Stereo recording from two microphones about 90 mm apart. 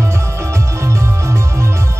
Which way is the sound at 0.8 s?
30° right (ahead or behind).